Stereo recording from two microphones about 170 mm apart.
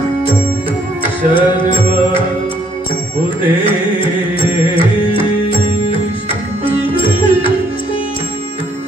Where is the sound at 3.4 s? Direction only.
30° left (ahead or behind).